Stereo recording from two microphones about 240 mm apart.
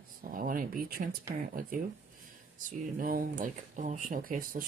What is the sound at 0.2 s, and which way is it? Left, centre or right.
Speech, right.